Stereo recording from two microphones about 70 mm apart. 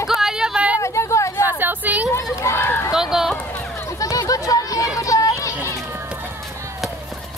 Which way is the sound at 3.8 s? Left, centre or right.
Left.